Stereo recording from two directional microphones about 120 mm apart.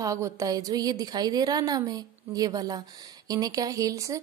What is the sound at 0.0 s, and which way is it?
A woman's voice, 25° right (ahead or behind).